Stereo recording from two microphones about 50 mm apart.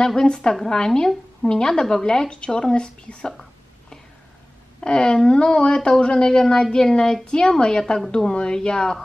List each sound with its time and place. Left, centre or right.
0.0 s speech: centre
4.7 s speech: centre